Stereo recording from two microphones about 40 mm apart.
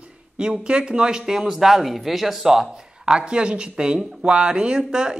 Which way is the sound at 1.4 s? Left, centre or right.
Centre.